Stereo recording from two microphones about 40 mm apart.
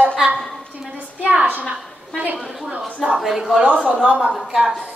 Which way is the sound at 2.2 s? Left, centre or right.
Right.